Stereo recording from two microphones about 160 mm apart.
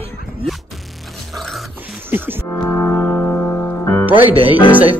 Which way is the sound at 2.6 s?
10° left (ahead or behind).